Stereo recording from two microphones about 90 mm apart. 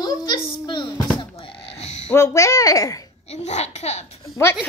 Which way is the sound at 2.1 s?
35° left (ahead or behind).